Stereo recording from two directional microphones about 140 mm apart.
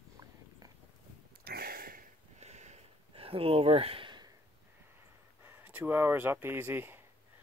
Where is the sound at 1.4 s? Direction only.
90° right.